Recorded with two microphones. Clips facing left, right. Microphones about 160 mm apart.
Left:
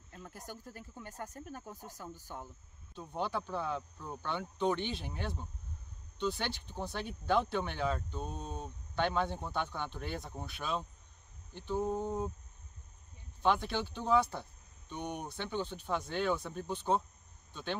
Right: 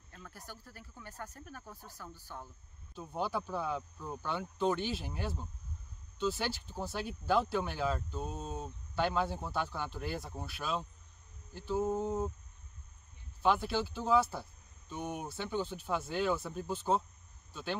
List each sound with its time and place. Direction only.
0.1 s speech: 20° left (ahead or behind)
2.9 s speech: 10° right (ahead or behind)
13.4 s speech: 5° right (ahead or behind)